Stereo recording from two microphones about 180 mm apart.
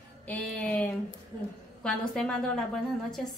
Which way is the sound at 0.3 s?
5° left (ahead or behind).